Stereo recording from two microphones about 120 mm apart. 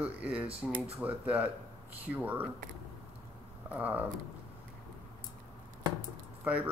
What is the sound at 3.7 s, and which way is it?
Speech, 15° right (ahead or behind).